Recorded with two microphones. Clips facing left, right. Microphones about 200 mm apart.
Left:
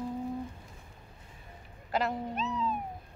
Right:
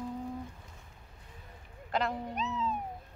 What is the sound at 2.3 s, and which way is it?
Cat, 20° right (ahead or behind).